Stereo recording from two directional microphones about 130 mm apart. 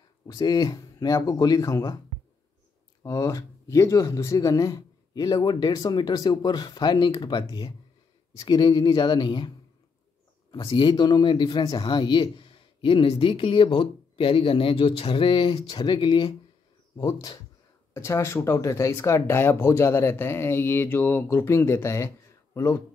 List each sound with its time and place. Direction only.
0.3 s speech: 30° left (ahead or behind)
3.0 s a man's voice: 25° left (ahead or behind)
10.7 s a man's voice: 35° left (ahead or behind)
16.9 s speech: 25° left (ahead or behind)